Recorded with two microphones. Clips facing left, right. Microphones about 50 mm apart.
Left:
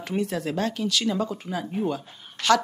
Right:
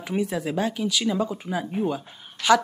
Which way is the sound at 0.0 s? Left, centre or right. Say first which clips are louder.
Right 1 dB; centre.